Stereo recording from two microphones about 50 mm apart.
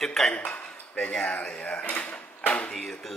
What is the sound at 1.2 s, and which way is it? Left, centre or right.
Speech, left.